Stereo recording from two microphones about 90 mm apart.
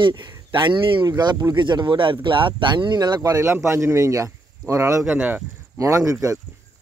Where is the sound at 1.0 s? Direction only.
50° right (ahead or behind).